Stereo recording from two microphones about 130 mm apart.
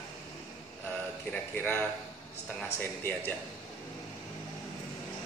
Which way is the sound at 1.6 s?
15° left (ahead or behind).